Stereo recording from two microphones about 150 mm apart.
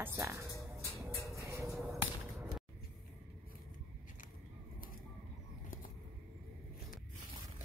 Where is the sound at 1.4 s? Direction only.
20° right (ahead or behind).